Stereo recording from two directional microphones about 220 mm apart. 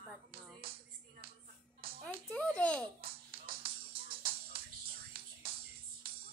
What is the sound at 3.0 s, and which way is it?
Music, 45° right (ahead or behind).